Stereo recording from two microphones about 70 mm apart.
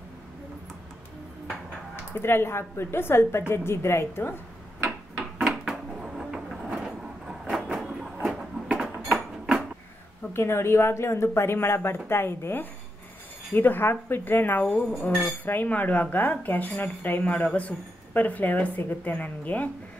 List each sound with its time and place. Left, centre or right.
2.1 s speech: left
5.1 s a sound: centre
10.3 s a woman's voice: left
14.7 s speech: centre
15.4 s a woman's voice: left